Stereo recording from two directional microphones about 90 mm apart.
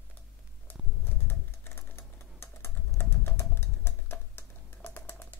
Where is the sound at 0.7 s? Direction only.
25° left (ahead or behind).